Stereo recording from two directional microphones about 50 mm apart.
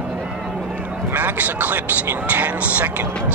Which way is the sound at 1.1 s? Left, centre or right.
Right.